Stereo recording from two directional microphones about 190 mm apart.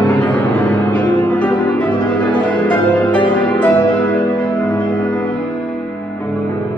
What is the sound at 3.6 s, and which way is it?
Music, 25° left (ahead or behind).